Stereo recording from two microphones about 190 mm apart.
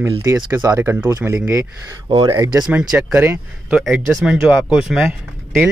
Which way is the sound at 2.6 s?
10° right (ahead or behind).